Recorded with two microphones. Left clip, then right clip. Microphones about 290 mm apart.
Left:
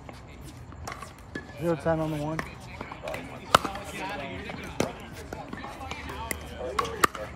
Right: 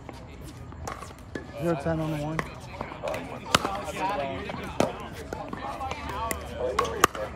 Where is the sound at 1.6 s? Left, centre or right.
Left.